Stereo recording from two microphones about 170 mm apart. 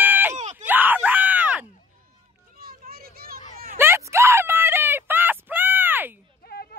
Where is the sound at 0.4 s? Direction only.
45° right (ahead or behind).